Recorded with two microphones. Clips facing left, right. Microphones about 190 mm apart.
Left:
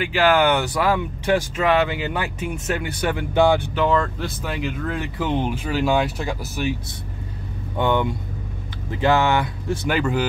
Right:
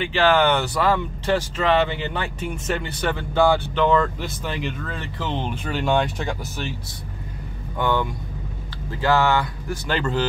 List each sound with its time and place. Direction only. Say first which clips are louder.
0.0 s speech: left 1 dB; 10° left (ahead or behind)
3.7 s speech: right 1 dB; centre (ahead or behind)
7.7 s speech: left 2 dB; 20° left (ahead or behind)